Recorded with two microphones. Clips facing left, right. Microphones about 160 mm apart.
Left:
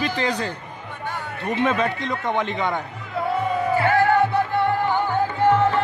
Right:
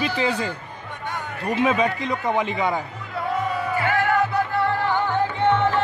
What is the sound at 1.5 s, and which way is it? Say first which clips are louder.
Speech: right 1 dB; 5° right (ahead or behind).